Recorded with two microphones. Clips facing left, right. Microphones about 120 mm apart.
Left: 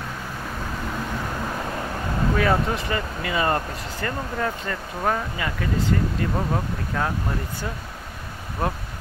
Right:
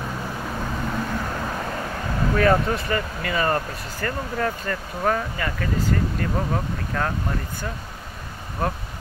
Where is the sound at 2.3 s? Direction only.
15° left (ahead or behind).